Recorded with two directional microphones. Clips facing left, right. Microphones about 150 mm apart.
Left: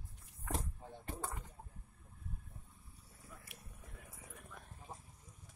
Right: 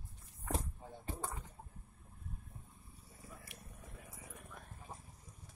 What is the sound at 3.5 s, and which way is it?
Vehicle, 5° left (ahead or behind).